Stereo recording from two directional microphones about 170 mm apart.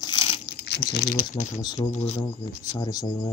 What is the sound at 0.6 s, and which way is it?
Crumpling, 75° left (ahead or behind).